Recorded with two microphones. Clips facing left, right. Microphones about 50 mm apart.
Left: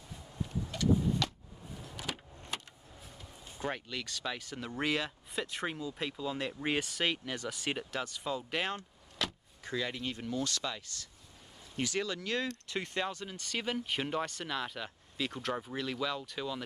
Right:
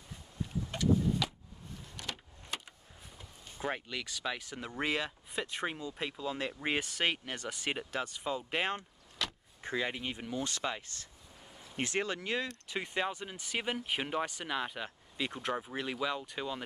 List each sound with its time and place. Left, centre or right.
0.7 s vehicle: right
1.2 s a sound: centre
1.7 s a sound: centre
2.5 s vehicle: centre
3.2 s speech: centre
9.2 s vehicle: centre
9.6 s speech: right
12.4 s speech: centre